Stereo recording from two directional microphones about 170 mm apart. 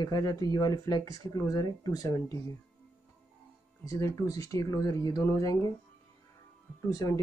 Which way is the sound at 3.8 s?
20° left (ahead or behind).